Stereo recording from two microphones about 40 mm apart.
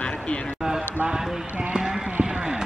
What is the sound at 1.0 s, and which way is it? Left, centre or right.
Speech, right.